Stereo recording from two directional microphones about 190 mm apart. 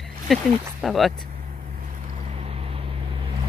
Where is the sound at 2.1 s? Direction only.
30° right (ahead or behind).